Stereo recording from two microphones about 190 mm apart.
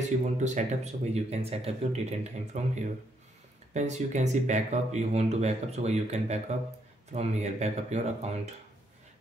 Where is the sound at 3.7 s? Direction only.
40° right (ahead or behind).